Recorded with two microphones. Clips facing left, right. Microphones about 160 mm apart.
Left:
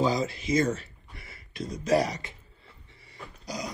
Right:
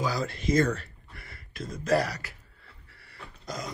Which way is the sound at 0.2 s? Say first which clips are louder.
Right 1 dB; centre (ahead or behind).